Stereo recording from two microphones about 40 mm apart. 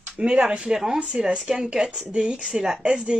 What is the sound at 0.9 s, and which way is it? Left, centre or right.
Speech, right.